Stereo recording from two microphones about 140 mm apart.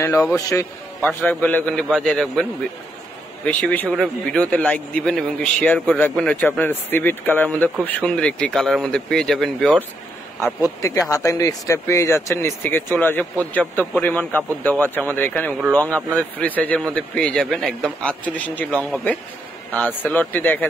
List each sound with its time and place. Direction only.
0.5 s speech: 15° left (ahead or behind)
3.4 s speech: 10° left (ahead or behind)
10.4 s speech: 25° left (ahead or behind)